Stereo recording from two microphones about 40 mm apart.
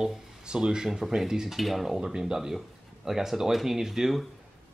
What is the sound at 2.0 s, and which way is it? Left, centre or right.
Speech, centre.